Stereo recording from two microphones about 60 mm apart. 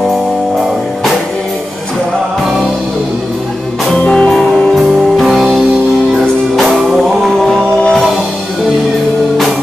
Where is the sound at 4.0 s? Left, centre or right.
Centre.